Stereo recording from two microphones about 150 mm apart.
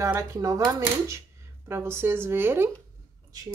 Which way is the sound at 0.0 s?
20° right (ahead or behind).